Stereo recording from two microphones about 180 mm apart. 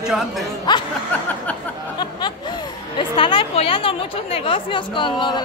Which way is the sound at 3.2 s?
30° left (ahead or behind).